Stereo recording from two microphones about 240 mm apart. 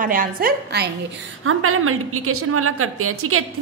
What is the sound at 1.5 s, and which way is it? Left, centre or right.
A woman's voice, right.